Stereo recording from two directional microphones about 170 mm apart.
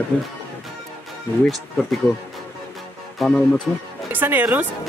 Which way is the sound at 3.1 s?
5° left (ahead or behind).